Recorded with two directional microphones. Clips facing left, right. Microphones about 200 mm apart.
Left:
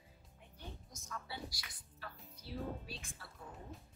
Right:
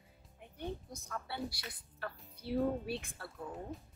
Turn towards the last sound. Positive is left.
turn(degrees=-60)  # may be behind; listen again after turning